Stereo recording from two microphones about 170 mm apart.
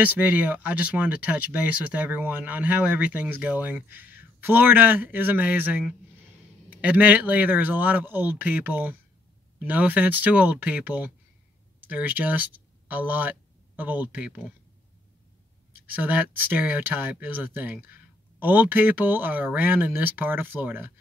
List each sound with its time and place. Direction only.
0.0 s speech: 10° right (ahead or behind)
15.9 s speech: 10° right (ahead or behind)